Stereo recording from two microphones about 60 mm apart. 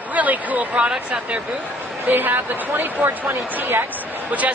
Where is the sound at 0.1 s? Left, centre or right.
Right.